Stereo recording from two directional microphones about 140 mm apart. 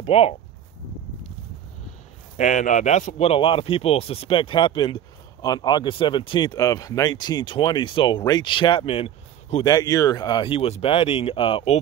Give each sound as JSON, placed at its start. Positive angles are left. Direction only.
{"t": 0.0, "sound": "speech", "side_deg": 45}
{"t": 2.3, "sound": "speech", "side_deg": 65}
{"t": 9.7, "sound": "speech", "side_deg": 25}